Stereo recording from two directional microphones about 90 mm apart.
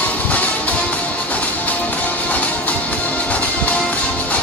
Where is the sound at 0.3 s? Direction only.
15° left (ahead or behind).